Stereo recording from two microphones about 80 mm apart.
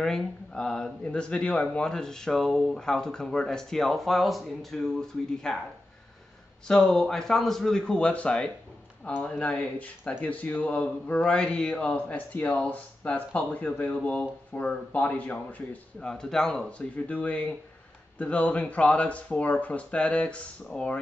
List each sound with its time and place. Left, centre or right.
0.0 s speech: centre
6.7 s speech: centre
16.1 s speech: centre